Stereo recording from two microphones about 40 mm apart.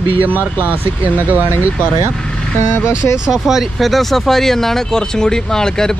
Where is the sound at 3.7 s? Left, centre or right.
Centre.